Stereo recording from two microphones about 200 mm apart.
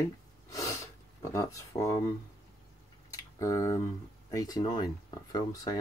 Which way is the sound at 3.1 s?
15° left (ahead or behind).